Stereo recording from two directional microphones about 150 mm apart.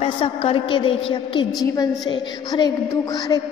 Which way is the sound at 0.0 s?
40° left (ahead or behind).